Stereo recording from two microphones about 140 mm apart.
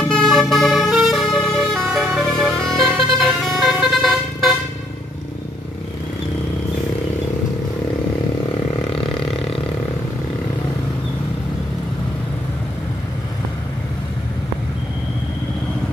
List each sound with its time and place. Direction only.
0.1 s vehicle: 5° left (ahead or behind)
8.9 s roar: 35° left (ahead or behind)